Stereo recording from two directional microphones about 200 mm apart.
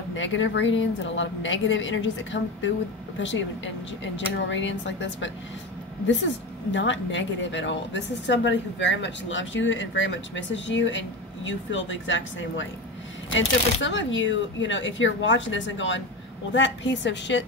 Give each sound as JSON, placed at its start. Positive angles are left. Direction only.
{"t": 0.1, "sound": "a woman's voice", "side_deg": 70}